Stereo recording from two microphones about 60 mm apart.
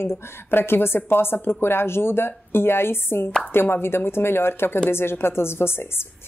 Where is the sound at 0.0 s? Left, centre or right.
Left.